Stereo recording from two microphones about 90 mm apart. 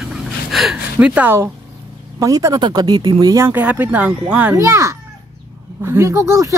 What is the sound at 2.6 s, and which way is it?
Speech, 50° right (ahead or behind).